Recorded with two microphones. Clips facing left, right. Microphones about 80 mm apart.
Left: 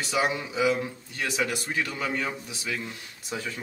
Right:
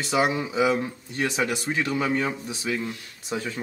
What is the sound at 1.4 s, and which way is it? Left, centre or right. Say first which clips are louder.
Speech: right 3 dB; centre.